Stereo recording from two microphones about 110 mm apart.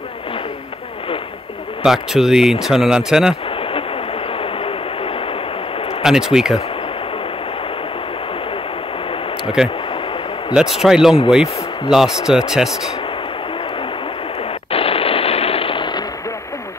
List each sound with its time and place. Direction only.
1.8 s speech: 5° right (ahead or behind)
3.4 s train: 55° left (ahead or behind)
6.0 s speech: 5° right (ahead or behind)
10.5 s speech: 5° right (ahead or behind)
14.7 s a sound: 60° left (ahead or behind)